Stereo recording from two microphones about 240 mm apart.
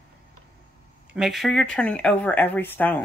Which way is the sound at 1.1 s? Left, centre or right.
Centre.